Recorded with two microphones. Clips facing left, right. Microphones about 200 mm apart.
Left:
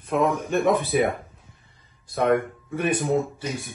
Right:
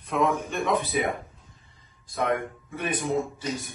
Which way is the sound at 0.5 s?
50° left (ahead or behind).